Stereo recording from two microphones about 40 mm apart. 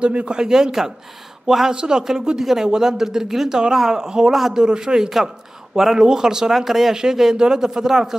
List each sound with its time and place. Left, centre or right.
0.0 s a man's voice: right